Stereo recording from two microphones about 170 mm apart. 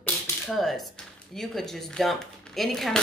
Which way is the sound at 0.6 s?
Centre (ahead or behind).